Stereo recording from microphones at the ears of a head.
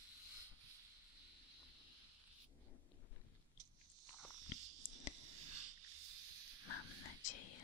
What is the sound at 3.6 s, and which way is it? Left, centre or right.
Biting, right.